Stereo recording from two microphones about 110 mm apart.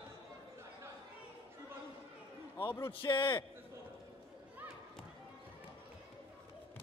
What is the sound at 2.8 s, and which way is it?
Speech, 50° left (ahead or behind).